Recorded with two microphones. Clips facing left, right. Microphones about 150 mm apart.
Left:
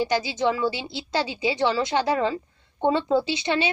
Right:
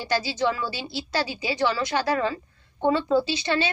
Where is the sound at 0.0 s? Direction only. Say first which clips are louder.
Left 2 dB; 20° left (ahead or behind).